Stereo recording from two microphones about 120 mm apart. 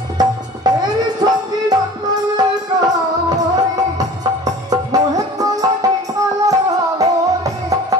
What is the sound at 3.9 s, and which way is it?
Music, 30° right (ahead or behind).